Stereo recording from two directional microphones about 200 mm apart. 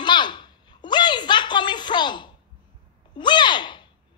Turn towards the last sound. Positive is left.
turn(degrees=20)  # may be behind; listen again after turning